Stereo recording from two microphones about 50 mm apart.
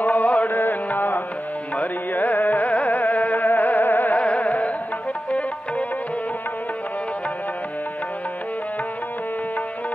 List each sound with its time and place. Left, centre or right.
0.0 s music: left
0.5 s music: left
4.2 s music: left